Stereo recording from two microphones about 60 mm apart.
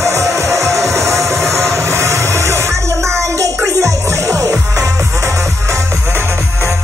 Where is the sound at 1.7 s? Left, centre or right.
Right.